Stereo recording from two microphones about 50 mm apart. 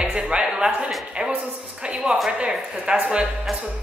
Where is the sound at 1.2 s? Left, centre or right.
Right.